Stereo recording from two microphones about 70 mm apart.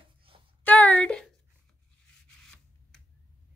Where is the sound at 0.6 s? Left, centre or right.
Left.